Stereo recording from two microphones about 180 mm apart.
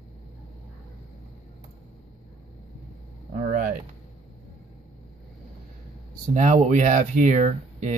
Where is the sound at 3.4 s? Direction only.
50° right (ahead or behind).